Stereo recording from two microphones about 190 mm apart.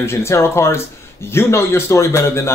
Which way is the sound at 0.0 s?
15° left (ahead or behind).